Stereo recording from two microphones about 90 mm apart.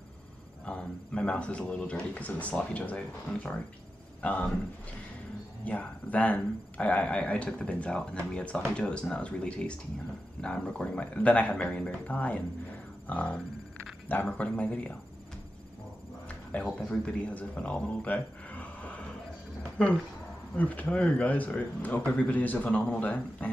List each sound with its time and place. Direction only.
0.7 s speech: 10° left (ahead or behind)
4.2 s speech: 15° left (ahead or behind)
5.7 s speech: 15° left (ahead or behind)
16.7 s speech: 10° left (ahead or behind)
20.5 s speech: 15° left (ahead or behind)